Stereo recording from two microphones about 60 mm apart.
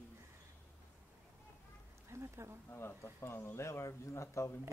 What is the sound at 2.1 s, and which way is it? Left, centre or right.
Speech, right.